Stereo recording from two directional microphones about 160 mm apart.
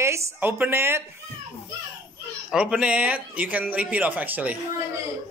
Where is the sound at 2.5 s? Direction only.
5° right (ahead or behind).